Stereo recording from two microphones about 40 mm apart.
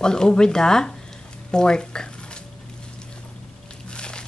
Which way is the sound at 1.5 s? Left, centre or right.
Centre.